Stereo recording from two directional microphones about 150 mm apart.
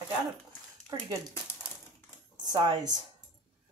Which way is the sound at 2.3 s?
30° right (ahead or behind).